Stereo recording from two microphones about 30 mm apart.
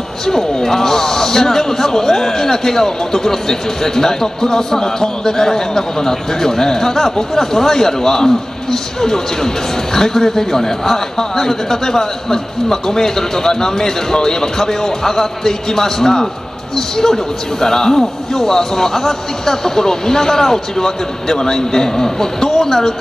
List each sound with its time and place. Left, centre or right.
0.3 s a man's voice: centre